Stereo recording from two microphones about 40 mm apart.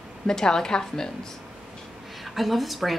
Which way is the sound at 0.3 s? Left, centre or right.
Centre.